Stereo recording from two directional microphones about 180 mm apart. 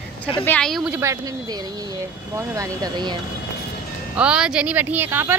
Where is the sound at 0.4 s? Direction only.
5° left (ahead or behind).